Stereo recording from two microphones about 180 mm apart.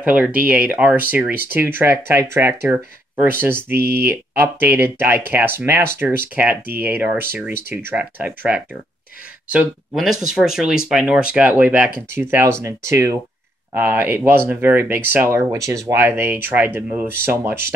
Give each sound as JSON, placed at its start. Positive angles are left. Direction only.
{"t": 0.7, "sound": "speech", "side_deg": -10}
{"t": 3.7, "sound": "speech", "side_deg": -60}
{"t": 4.1, "sound": "speech", "side_deg": -10}